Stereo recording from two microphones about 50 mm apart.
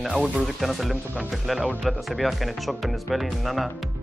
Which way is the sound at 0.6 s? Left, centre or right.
Centre.